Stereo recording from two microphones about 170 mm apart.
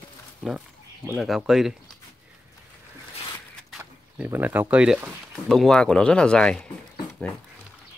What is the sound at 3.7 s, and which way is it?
Speech, 10° right (ahead or behind).